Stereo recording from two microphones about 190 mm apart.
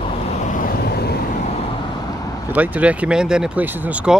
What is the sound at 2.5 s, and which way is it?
Speech, 10° right (ahead or behind).